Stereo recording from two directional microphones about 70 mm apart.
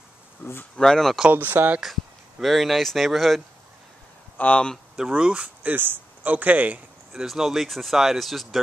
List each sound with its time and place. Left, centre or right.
0.4 s speech: left
0.7 s speech: centre
1.3 s speech: right
1.8 s speech: centre
4.4 s speech: centre
4.9 s speech: centre
7.1 s speech: centre